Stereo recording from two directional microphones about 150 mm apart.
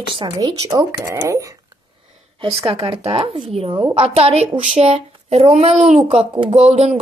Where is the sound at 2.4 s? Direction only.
40° right (ahead or behind).